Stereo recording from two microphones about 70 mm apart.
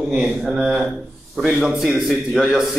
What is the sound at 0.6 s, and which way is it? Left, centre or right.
A man's voice, centre.